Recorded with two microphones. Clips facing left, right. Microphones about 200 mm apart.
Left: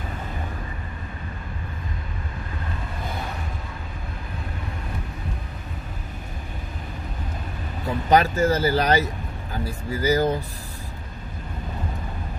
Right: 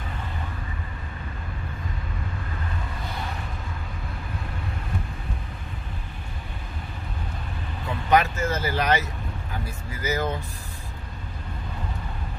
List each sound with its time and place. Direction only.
8.1 s speech: 35° left (ahead or behind)